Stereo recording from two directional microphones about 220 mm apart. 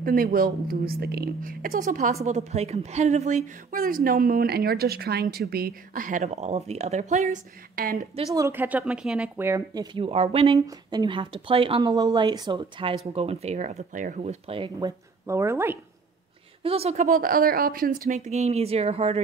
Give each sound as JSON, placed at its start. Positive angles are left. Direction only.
{"t": 0.0, "sound": "a woman's voice", "side_deg": -40}
{"t": 8.4, "sound": "a woman's voice", "side_deg": -10}
{"t": 9.9, "sound": "speech", "side_deg": -25}
{"t": 16.6, "sound": "a woman's voice", "side_deg": -25}